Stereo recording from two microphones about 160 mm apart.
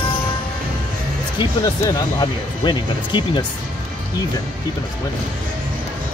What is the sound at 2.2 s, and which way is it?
Speech, 30° left (ahead or behind).